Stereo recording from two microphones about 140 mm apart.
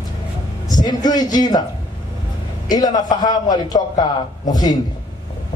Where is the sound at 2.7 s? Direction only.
30° left (ahead or behind).